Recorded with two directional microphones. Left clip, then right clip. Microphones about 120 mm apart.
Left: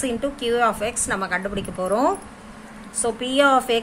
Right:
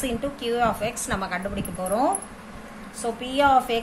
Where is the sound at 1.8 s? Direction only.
60° left (ahead or behind).